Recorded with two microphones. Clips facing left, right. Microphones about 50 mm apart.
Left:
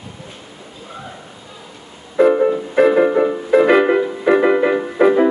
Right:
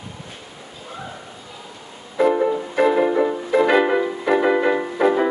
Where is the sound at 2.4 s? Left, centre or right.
Left.